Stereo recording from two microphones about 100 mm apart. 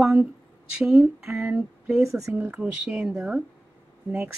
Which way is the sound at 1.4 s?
20° right (ahead or behind).